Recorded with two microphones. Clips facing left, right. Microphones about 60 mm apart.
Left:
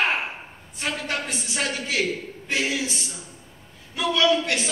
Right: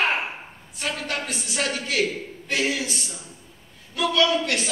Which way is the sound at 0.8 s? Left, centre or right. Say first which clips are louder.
Left 1 dB; centre.